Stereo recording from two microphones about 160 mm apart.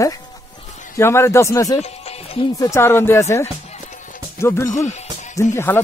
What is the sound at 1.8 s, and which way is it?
Music, 40° left (ahead or behind).